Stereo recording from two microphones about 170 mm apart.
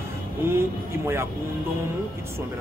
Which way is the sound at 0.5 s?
15° right (ahead or behind).